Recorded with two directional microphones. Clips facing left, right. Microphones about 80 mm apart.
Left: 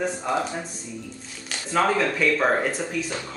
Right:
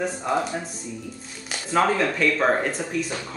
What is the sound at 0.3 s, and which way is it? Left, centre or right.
Speech, centre.